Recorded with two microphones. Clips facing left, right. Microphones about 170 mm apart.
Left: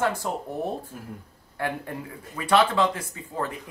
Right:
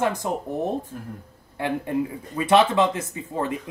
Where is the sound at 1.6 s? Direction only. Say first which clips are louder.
Right 6 dB; 20° right (ahead or behind).